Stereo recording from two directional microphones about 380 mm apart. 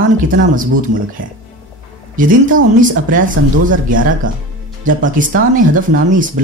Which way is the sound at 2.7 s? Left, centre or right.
Right.